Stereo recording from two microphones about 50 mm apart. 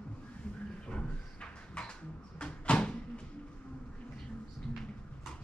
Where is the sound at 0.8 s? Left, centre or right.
Left.